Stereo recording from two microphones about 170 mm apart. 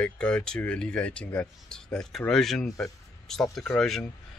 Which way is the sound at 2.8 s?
Centre (ahead or behind).